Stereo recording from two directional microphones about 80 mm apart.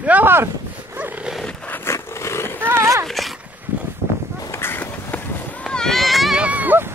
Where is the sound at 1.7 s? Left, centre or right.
Left.